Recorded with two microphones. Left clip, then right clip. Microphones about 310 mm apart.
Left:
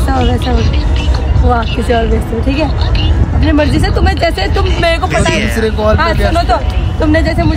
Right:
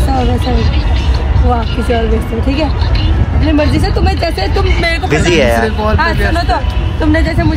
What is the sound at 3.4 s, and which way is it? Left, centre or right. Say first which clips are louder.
Speech: left 1 dB; centre.